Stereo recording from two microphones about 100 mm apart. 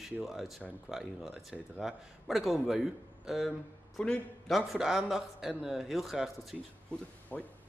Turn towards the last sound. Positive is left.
turn(degrees=15)  # may be behind; listen again after turning